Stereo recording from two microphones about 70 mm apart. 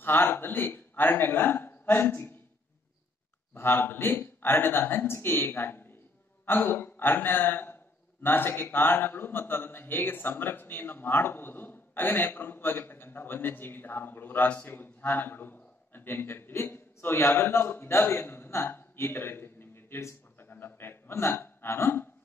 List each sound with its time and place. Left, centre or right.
0.0 s a man's voice: left
3.5 s a man's voice: left